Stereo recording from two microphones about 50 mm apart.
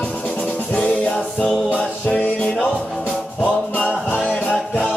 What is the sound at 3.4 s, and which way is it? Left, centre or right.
Music, left.